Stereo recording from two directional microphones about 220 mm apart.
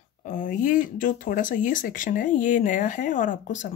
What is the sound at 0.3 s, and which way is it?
Speech, 40° left (ahead or behind).